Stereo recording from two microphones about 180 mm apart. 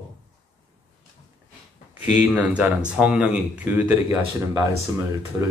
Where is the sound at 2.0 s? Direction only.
5° right (ahead or behind).